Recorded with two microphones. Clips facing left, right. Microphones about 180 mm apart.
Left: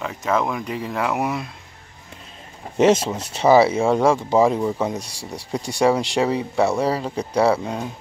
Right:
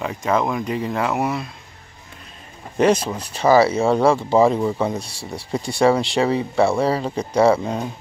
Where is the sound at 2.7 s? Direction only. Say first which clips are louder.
Left 1 dB; 25° left (ahead or behind).